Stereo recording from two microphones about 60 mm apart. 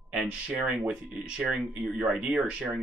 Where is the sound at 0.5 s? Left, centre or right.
Right.